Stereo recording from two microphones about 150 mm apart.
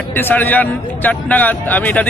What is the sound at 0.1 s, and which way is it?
A man's voice, 15° left (ahead or behind).